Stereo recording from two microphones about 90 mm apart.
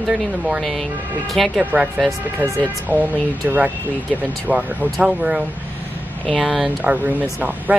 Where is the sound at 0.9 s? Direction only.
20° right (ahead or behind).